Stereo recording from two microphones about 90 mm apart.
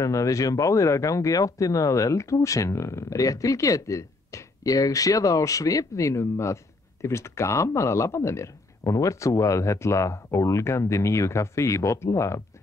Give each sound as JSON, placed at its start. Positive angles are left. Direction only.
{"t": 0.0, "sound": "speech", "side_deg": 35}